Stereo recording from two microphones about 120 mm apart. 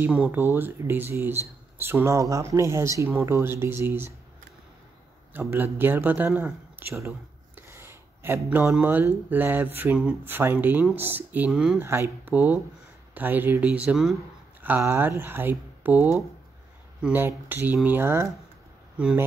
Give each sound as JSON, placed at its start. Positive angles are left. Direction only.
{"t": 0.0, "sound": "speech", "side_deg": -10}
{"t": 5.3, "sound": "speech", "side_deg": -20}
{"t": 7.5, "sound": "a sound", "side_deg": -20}
{"t": 8.8, "sound": "speech", "side_deg": -15}
{"t": 11.8, "sound": "speech", "side_deg": -20}
{"t": 14.6, "sound": "speech", "side_deg": -20}